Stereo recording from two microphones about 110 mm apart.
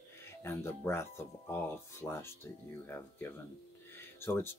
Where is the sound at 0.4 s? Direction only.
20° left (ahead or behind).